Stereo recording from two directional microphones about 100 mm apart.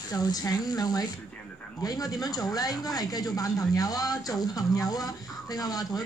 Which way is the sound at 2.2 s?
40° left (ahead or behind).